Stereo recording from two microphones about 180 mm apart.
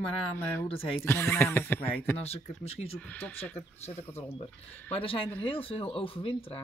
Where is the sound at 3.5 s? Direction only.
10° left (ahead or behind).